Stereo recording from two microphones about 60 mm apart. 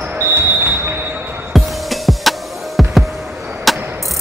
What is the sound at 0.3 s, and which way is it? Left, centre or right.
Music, right.